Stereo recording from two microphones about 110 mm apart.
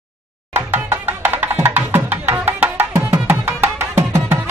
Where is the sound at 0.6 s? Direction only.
20° right (ahead or behind).